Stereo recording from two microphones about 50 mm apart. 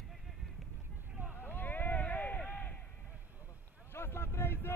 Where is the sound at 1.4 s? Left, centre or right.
Left.